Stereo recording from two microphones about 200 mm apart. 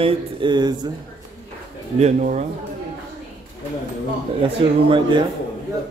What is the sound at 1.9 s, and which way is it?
Speech, 35° right (ahead or behind).